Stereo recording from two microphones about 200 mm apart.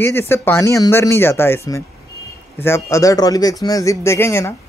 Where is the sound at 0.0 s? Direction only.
10° left (ahead or behind).